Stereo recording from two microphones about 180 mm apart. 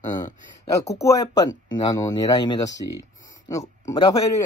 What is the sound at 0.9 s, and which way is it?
Speech, 20° left (ahead or behind).